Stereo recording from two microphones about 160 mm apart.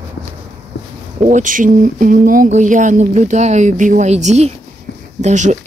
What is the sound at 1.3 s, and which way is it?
Speech, 55° right (ahead or behind).